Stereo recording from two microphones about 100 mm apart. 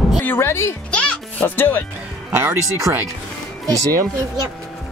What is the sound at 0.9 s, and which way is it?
Music, 15° left (ahead or behind).